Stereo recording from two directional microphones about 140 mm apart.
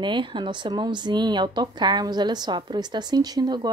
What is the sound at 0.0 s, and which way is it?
Speech, 35° right (ahead or behind).